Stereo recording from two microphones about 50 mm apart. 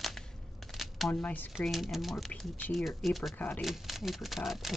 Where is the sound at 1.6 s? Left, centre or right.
Centre.